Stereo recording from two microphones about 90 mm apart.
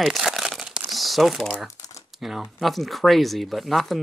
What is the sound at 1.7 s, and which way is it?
Crumpling, 40° left (ahead or behind).